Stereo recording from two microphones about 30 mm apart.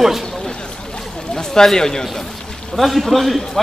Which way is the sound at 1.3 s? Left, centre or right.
Centre.